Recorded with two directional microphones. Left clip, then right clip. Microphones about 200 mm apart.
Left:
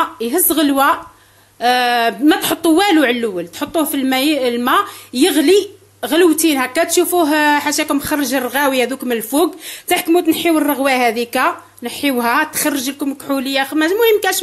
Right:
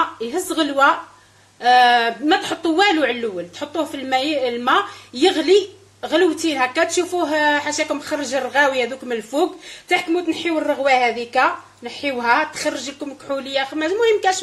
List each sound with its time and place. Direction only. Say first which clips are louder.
0.2 s a woman's voice: left 5 dB; 50° left (ahead or behind)